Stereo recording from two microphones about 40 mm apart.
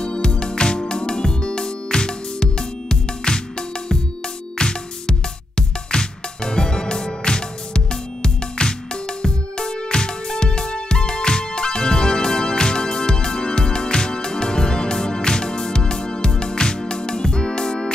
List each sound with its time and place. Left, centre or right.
0.0 s music: left
4.6 s music: left